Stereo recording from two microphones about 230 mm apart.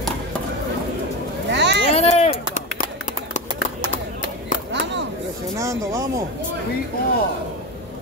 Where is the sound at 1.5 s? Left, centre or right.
Right.